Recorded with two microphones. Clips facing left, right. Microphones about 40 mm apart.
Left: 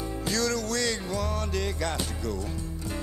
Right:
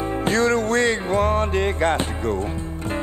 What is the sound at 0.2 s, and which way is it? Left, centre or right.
Music, right.